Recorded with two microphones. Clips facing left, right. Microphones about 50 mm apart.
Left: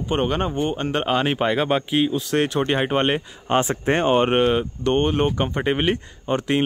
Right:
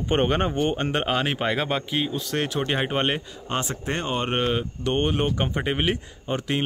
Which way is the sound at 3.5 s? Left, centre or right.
Left.